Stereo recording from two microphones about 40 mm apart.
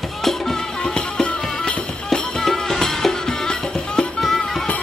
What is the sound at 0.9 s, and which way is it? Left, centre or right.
Music, left.